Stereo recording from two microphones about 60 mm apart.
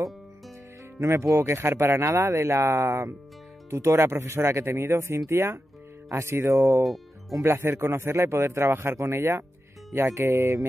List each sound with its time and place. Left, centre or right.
0.9 s speech: right
7.3 s speech: right